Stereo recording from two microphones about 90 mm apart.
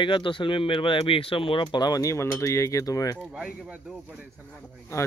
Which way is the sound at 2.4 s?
35° left (ahead or behind).